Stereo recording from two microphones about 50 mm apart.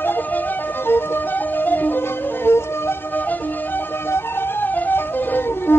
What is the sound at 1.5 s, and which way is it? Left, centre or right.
Music, left.